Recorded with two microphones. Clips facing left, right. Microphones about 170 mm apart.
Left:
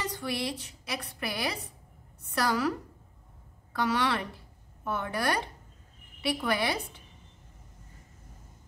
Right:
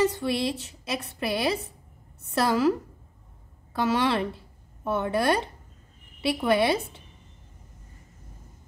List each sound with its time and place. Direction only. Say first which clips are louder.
0.0 s a woman's voice: right 9 dB; 25° right (ahead or behind)
3.7 s a woman's voice: right 4 dB; 25° right (ahead or behind)